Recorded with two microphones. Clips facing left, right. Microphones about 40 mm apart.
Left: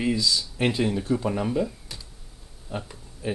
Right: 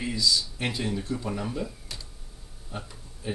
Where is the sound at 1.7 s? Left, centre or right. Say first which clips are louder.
Left 1 dB; centre.